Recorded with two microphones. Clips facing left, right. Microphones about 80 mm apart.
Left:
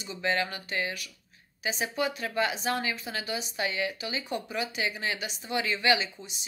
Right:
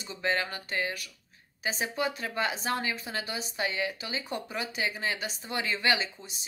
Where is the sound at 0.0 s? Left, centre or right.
Right.